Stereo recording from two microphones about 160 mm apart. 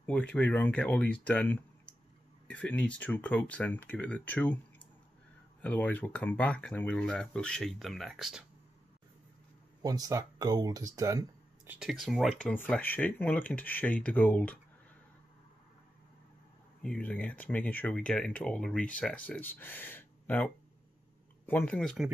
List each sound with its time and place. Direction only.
0.0 s speech: 10° left (ahead or behind)
9.8 s speech: 25° right (ahead or behind)
11.8 s speech: centre (ahead or behind)
16.8 s speech: 5° left (ahead or behind)